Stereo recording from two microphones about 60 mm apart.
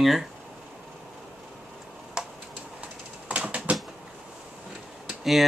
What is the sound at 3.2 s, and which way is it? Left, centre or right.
Typewriter, right.